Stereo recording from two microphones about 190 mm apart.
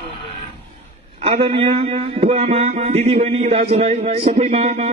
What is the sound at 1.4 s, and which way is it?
Speech, 30° right (ahead or behind).